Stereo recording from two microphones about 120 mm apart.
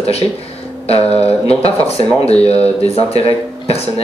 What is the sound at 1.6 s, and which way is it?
Speech, 55° left (ahead or behind).